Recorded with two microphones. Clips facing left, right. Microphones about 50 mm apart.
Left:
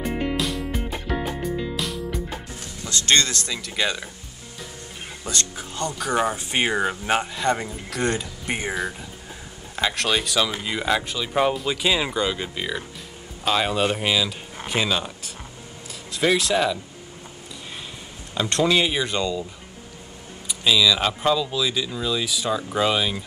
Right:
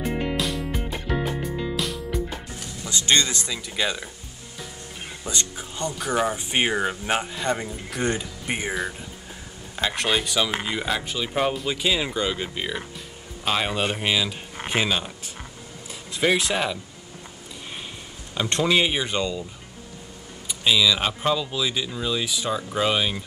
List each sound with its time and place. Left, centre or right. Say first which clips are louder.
0.0 s music: left 1 dB; centre
2.8 s speech: left 1 dB; centre
5.2 s speech: left 1 dB; centre
6.7 s speech: left 1 dB; centre
7.1 s speech: left 3 dB; centre
9.8 s speech: left 1 dB; centre
12.3 s speech: left 1 dB; centre
16.1 s speech: left 1 dB; centre
18.3 s speech: left 1 dB; centre
20.4 s speech: left 1 dB; centre